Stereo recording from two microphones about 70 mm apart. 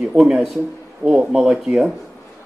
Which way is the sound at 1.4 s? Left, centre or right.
Centre.